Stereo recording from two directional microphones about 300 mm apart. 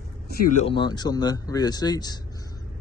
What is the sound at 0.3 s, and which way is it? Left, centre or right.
Speech, left.